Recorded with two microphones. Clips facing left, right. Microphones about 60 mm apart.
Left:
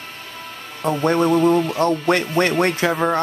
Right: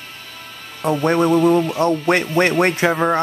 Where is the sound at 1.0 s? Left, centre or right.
Centre.